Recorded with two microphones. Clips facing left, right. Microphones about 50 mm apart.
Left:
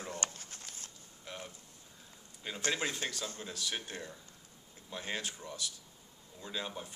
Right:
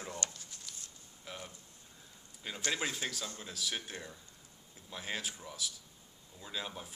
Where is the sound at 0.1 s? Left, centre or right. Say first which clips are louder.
Left 2 dB; left.